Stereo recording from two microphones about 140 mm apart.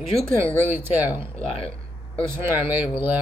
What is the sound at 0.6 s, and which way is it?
Speech, 15° right (ahead or behind).